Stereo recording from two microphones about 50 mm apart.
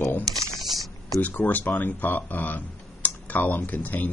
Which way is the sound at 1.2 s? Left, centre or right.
Left.